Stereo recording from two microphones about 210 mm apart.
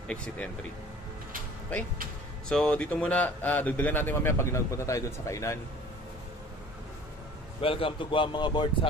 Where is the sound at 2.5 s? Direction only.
5° left (ahead or behind).